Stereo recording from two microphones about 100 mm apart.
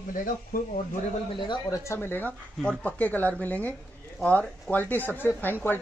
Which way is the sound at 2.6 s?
10° left (ahead or behind).